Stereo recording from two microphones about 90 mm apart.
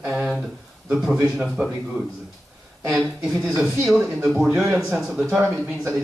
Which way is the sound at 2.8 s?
5° right (ahead or behind).